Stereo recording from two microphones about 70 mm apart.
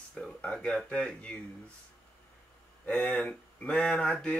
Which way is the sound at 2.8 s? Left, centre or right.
Centre.